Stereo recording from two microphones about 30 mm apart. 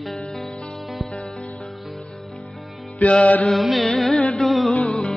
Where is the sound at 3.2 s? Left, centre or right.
Left.